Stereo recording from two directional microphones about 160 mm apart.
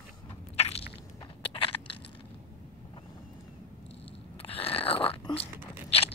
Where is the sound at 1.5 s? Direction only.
35° left (ahead or behind).